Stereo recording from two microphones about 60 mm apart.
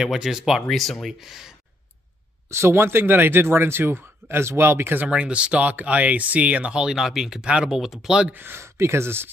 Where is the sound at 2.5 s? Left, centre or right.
Right.